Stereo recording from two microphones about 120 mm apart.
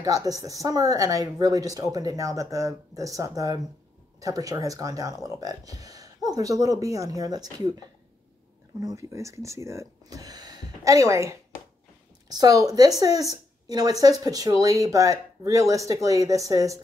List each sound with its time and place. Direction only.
0.0 s speech: 30° right (ahead or behind)